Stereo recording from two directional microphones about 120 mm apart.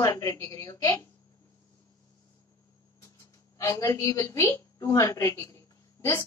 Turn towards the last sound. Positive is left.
turn(degrees=25)  # may be behind; listen again after turning